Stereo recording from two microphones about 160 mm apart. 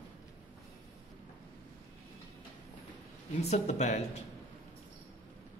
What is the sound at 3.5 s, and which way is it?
Speech, 45° left (ahead or behind).